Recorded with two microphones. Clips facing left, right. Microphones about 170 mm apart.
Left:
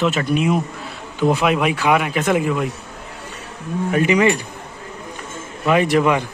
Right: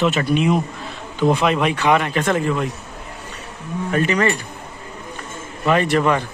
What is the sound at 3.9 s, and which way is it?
Speech, 15° left (ahead or behind).